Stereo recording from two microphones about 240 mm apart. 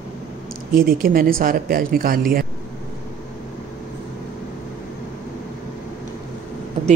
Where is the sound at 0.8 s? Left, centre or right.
Right.